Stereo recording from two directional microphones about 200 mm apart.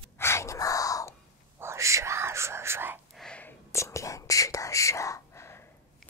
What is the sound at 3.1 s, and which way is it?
Whispering, 5° left (ahead or behind).